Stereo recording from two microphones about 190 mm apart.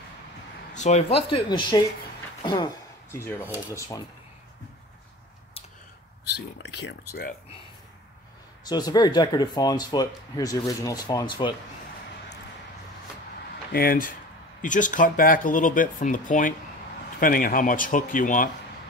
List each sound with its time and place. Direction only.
0.7 s speech: 35° left (ahead or behind); by 4.0 s 15° left (ahead or behind)
6.3 s speech: 65° left (ahead or behind)
8.6 s speech: 20° left (ahead or behind)
13.7 s speech: 50° left (ahead or behind)